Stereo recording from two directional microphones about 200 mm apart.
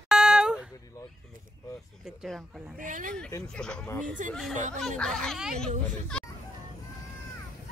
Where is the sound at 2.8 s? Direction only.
40° right (ahead or behind).